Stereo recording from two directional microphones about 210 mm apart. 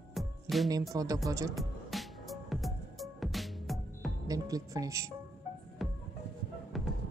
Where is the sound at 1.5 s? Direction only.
Centre (ahead or behind).